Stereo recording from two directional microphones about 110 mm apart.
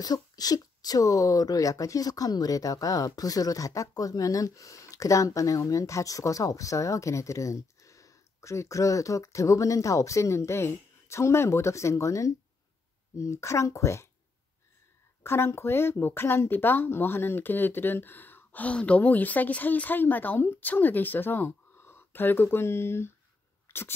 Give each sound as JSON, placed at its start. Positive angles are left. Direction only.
{"t": 0.0, "sound": "speech", "side_deg": 35}
{"t": 15.2, "sound": "speech", "side_deg": 20}
{"t": 23.7, "sound": "sneeze", "side_deg": 20}